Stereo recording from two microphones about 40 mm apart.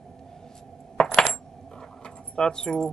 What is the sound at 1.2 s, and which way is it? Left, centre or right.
Coin, centre.